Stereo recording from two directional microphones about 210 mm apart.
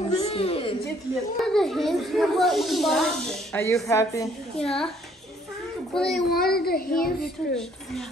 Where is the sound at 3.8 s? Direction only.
15° left (ahead or behind).